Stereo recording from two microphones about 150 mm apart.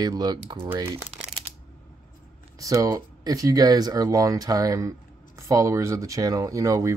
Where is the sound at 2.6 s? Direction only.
20° right (ahead or behind).